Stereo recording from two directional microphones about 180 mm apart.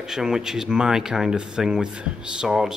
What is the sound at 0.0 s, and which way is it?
Speech, 5° right (ahead or behind).